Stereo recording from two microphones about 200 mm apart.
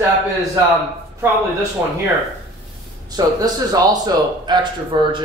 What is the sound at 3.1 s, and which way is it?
A man's voice, 20° right (ahead or behind).